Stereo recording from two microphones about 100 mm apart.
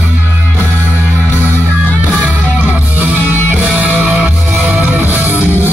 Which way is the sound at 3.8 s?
15° right (ahead or behind).